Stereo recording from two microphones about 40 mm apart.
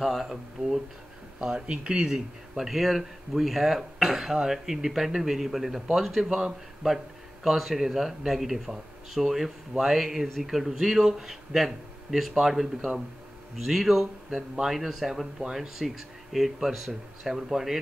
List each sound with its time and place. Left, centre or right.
0.0 s speech: centre
1.4 s speech: right
7.4 s speech: centre